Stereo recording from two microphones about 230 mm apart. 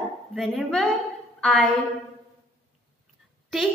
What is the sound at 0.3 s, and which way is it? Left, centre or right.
A woman's voice, centre.